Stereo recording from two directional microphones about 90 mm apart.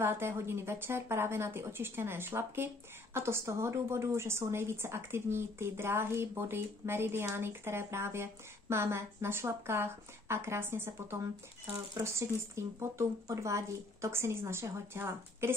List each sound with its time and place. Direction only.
0.0 s speech: 25° right (ahead or behind)